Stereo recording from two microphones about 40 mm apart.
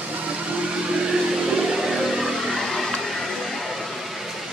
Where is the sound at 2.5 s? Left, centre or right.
Centre.